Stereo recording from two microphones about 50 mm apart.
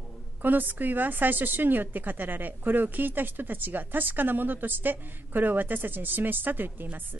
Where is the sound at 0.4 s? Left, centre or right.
Right.